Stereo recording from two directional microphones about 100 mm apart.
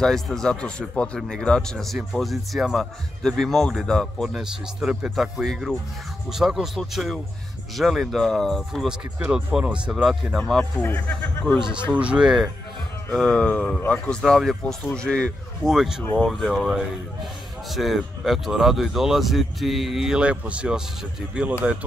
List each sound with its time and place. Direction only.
0.0 s a man's voice: 5° left (ahead or behind)
9.2 s speech: 10° right (ahead or behind)
10.6 s speech: 20° left (ahead or behind)
11.5 s speech: 10° right (ahead or behind)
13.1 s a man's voice: 10° left (ahead or behind)
14.2 s a man's voice: centre (ahead or behind)
15.7 s speech: 5° right (ahead or behind)